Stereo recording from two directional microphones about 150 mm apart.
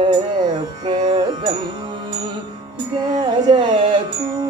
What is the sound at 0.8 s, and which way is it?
Music, 30° right (ahead or behind).